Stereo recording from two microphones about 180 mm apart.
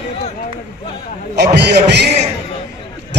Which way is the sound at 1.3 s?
70° right (ahead or behind).